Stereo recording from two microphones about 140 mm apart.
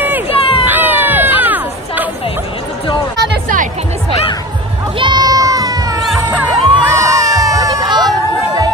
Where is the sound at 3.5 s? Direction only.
60° right (ahead or behind).